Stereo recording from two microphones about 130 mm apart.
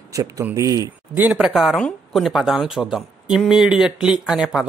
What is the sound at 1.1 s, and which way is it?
Speech, 10° right (ahead or behind).